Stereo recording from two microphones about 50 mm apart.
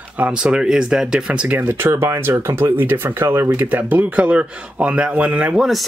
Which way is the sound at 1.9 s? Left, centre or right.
Right.